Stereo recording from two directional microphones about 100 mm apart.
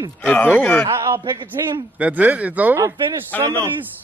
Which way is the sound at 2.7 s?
30° right (ahead or behind).